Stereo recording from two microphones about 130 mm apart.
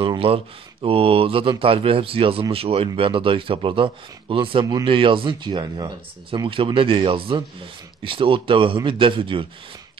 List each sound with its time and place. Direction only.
0.0 s speech: 45° right (ahead or behind)